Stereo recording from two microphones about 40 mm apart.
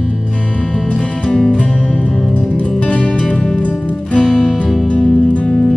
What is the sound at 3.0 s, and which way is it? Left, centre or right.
Music, left.